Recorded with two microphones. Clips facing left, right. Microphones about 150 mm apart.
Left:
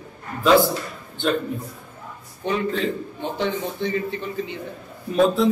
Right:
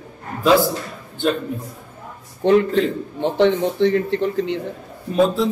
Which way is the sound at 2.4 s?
70° right (ahead or behind).